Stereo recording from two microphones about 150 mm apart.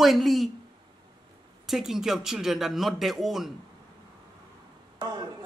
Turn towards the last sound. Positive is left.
turn(degrees=-30)  # may be behind; listen again after turning